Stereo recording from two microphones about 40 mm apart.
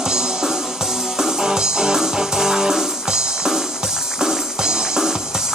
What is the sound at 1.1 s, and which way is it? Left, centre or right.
Music, centre.